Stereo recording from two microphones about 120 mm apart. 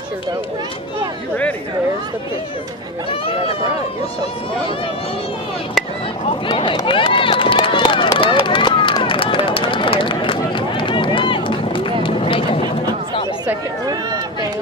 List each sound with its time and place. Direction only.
6.4 s speech: 45° left (ahead or behind)
6.9 s run: 45° left (ahead or behind)